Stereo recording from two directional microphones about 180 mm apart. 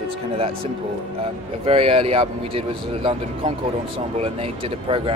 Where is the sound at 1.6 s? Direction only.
30° right (ahead or behind).